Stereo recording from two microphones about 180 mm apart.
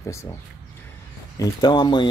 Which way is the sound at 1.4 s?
25° left (ahead or behind).